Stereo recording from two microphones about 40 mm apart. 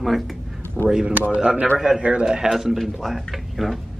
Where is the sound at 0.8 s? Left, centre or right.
Left.